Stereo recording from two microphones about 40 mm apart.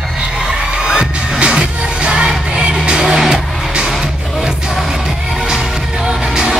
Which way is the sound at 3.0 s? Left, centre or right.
Centre.